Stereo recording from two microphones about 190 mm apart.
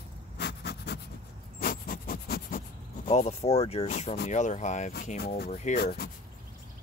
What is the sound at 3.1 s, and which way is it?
Speech, 35° left (ahead or behind).